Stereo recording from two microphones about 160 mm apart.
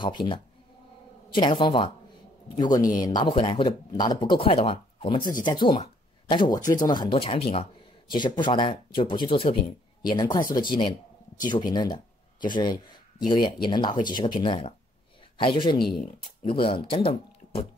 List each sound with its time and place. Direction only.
0.0 s speech: 30° left (ahead or behind)